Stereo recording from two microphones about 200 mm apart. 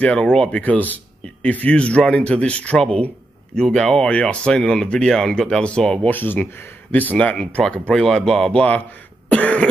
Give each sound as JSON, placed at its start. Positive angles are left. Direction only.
{"t": 0.0, "sound": "speech", "side_deg": 5}
{"t": 9.3, "sound": "cough", "side_deg": 5}